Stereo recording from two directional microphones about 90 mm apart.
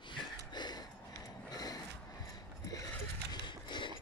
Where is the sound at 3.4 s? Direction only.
60° left (ahead or behind).